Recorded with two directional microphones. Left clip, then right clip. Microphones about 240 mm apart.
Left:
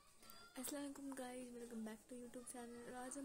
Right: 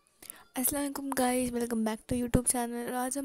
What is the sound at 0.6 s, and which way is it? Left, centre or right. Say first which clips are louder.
A woman's voice: right 17 dB; right.